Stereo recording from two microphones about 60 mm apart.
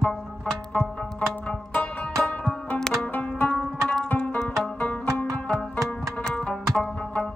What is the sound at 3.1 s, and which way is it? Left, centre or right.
Zither, left.